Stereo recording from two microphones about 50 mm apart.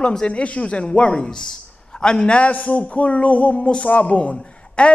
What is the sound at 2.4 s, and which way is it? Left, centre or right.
A man's voice, left.